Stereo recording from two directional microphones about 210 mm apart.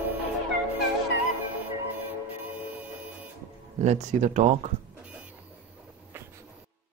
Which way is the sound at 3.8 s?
35° right (ahead or behind).